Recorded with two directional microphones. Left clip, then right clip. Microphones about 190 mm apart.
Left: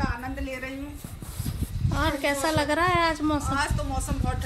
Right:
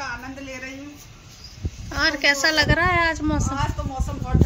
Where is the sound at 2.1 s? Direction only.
15° left (ahead or behind).